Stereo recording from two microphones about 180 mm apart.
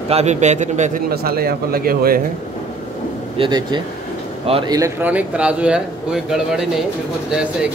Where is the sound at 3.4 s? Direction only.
25° right (ahead or behind); by 6.7 s 5° right (ahead or behind).